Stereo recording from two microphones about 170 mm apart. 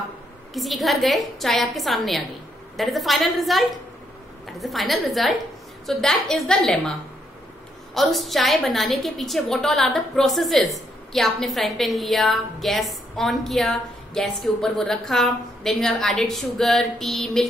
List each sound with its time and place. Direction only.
0.6 s a woman's voice: centre (ahead or behind)
7.9 s a woman's voice: centre (ahead or behind)